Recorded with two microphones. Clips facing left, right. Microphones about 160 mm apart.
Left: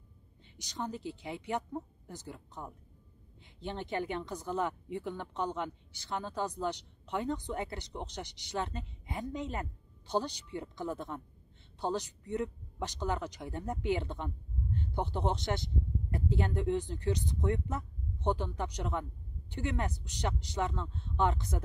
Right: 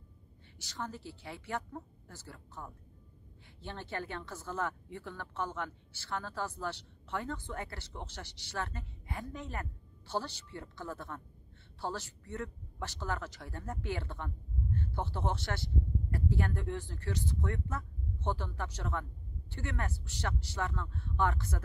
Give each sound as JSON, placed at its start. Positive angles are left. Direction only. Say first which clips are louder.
{"t": 0.6, "sound": "speech", "louder": "left 3 dB", "side_deg": 20}